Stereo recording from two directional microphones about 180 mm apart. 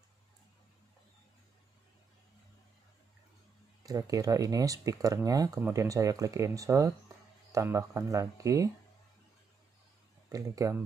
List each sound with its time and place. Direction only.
3.8 s speech: 20° right (ahead or behind)
10.3 s speech: 20° right (ahead or behind)